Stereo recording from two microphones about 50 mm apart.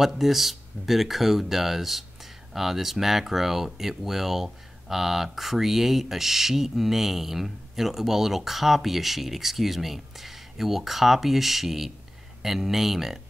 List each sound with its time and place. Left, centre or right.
0.0 s speech: centre